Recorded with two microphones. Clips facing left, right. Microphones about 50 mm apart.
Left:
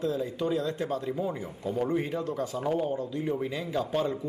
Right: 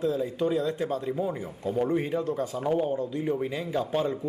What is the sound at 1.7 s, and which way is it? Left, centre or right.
Speech, centre.